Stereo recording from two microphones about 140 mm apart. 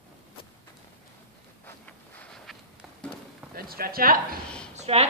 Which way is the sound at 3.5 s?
90° right.